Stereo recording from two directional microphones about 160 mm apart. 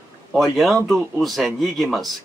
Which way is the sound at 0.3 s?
Centre (ahead or behind).